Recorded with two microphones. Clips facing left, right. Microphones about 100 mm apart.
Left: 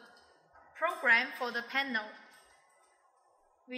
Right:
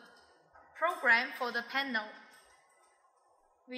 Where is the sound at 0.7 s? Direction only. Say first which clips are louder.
Right 1 dB; centre (ahead or behind).